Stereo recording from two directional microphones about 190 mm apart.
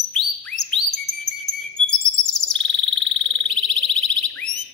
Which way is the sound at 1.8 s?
35° left (ahead or behind).